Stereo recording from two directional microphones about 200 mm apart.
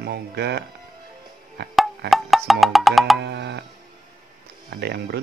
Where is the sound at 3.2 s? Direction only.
55° right (ahead or behind).